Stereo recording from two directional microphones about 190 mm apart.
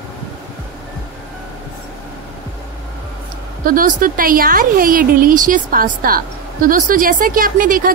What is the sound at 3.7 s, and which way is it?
A woman's voice, 45° right (ahead or behind).